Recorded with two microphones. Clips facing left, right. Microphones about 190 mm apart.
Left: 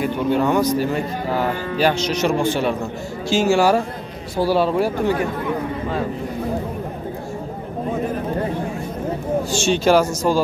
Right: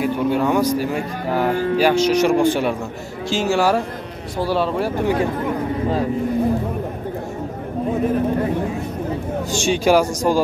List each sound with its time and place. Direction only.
0.0 s speech: 5° right (ahead or behind)
1.5 s speech: 45° right (ahead or behind)
1.8 s speech: 10° right (ahead or behind)
3.3 s speech: centre (ahead or behind)
9.5 s speech: 15° right (ahead or behind)